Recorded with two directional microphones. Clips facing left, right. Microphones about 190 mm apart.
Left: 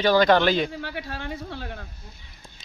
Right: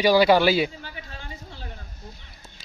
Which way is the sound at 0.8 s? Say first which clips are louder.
Left 8 dB; 70° left (ahead or behind).